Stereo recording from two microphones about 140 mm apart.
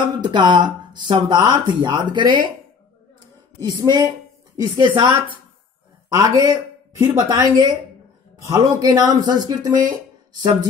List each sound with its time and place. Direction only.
0.2 s speech: 35° right (ahead or behind)
3.6 s speech: 30° right (ahead or behind)